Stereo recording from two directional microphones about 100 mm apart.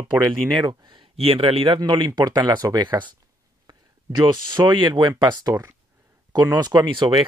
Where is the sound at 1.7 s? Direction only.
50° right (ahead or behind).